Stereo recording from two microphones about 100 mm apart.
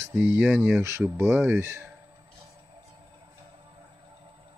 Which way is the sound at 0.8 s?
25° right (ahead or behind).